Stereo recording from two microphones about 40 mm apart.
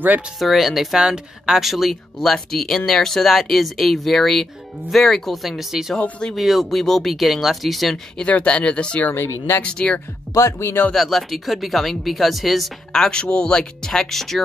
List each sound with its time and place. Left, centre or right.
0.4 s speech: centre
0.9 s speech: centre
5.9 s speech: left
6.3 s speech: centre
8.3 s speech: left
9.1 s speech: left
9.6 s speech: left
10.9 s speech: centre
12.9 s speech: centre
14.1 s speech: centre